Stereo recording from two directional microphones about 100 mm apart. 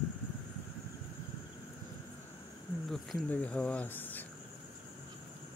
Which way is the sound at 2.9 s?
Centre (ahead or behind).